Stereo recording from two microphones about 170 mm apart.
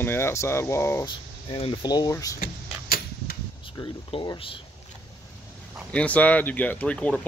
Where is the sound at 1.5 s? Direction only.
30° left (ahead or behind).